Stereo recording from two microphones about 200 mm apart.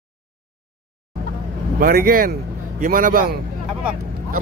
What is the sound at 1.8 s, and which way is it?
Speech, 50° right (ahead or behind).